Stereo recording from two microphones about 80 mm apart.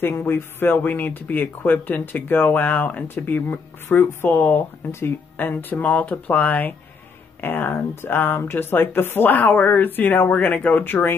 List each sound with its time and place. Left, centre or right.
0.0 s speech: left